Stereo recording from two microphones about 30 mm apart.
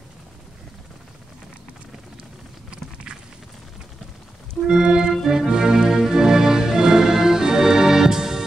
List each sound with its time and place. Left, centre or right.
4.6 s organ: centre
5.1 s music: centre